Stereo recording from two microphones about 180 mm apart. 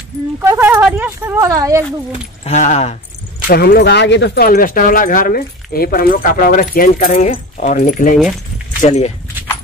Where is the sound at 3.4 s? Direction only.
60° left (ahead or behind); by 7.7 s 40° left (ahead or behind).